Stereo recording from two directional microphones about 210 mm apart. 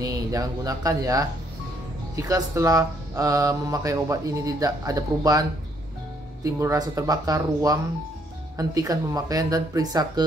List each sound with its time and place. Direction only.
0.0 s speech: 15° right (ahead or behind)
6.4 s speech: 15° right (ahead or behind)